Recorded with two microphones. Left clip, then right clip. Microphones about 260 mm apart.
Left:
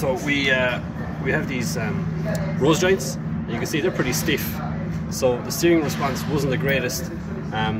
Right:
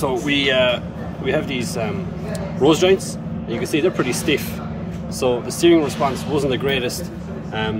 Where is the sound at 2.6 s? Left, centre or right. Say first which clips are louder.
Right 4 dB; centre.